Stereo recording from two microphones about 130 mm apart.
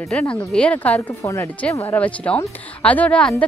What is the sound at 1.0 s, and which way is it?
Speech, 20° left (ahead or behind).